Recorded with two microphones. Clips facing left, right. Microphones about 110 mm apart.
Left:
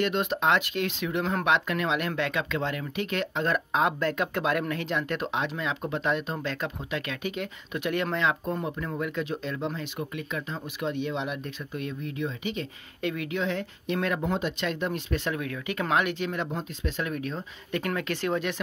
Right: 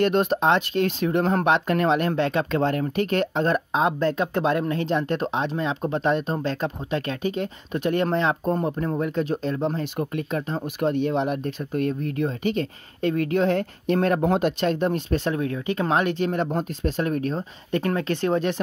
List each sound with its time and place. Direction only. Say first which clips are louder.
0.0 s speech: right 6 dB; 40° right (ahead or behind)